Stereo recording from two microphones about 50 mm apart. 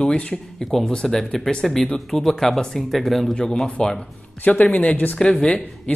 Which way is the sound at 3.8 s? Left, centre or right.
Centre.